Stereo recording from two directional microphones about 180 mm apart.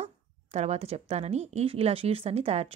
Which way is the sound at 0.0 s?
35° right (ahead or behind).